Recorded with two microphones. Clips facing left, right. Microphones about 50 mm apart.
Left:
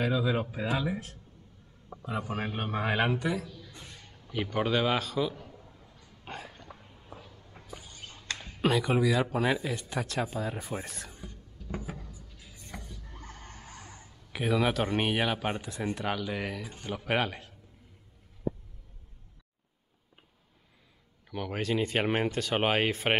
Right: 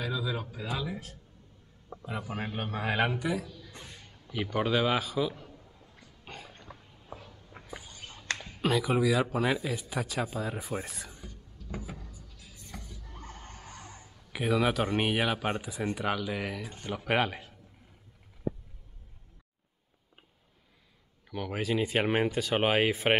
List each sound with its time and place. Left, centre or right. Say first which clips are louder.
0.0 s a man's voice: left 5 dB; left
2.0 s speech: left 3 dB; centre
3.8 s a sound: even; centre
4.3 s speech: even; centre
6.3 s dog: left 4 dB; centre
7.5 s a sound: right 2 dB; right
8.5 s speech: left 1 dB; centre
11.1 s a sound: left 1 dB; centre
12.0 s music: left 1 dB; left
13.2 s a sound: right 3 dB; centre
14.3 s speech: even; centre
21.3 s speech: even; centre